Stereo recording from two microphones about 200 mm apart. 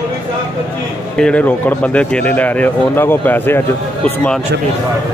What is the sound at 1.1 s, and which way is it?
Speech, 5° left (ahead or behind).